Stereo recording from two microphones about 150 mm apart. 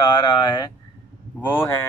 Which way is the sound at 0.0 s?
30° left (ahead or behind).